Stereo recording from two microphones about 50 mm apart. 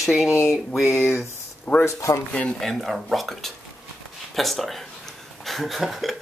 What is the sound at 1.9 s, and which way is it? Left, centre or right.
Speech, left.